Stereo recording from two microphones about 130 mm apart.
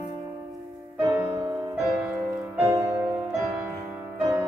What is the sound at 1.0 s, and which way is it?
Music, 15° right (ahead or behind).